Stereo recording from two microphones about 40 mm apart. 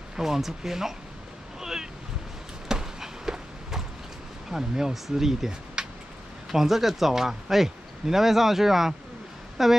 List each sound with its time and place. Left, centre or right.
0.1 s speech: centre
1.6 s boat: centre
2.7 s a sound: centre
4.5 s speech: centre
5.8 s a sound: centre
6.5 s a woman's voice: centre